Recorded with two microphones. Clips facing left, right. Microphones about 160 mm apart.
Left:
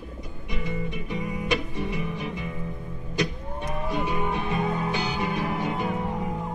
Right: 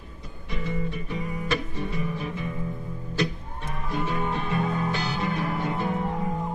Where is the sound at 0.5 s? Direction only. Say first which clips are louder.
Right 1 dB; 15° left (ahead or behind).